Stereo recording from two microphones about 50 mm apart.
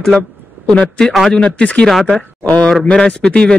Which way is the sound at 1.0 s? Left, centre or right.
Centre.